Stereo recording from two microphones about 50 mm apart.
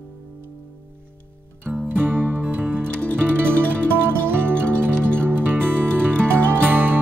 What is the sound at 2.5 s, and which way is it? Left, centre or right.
Music, right.